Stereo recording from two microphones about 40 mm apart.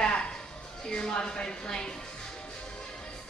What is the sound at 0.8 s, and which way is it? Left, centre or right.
Speech, left.